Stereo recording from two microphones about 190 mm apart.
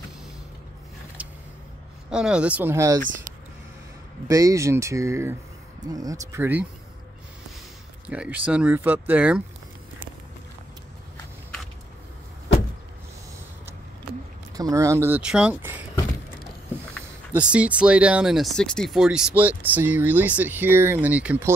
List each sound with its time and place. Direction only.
1.2 s vehicle: 5° right (ahead or behind)
2.0 s speech: 5° right (ahead or behind)
4.3 s speech: 15° right (ahead or behind)
8.1 s speech: 5° right (ahead or behind)
14.6 s speech: 15° right (ahead or behind)
17.3 s speech: 5° right (ahead or behind)